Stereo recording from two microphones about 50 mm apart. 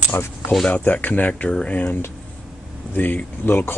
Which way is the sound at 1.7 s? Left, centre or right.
Left.